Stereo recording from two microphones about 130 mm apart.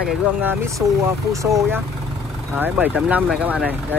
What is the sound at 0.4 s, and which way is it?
Speech, 15° right (ahead or behind).